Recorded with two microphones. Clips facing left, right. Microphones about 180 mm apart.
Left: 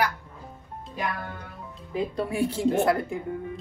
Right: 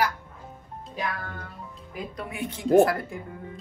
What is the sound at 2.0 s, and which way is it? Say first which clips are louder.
Speech: left 8 dB; 30° left (ahead or behind).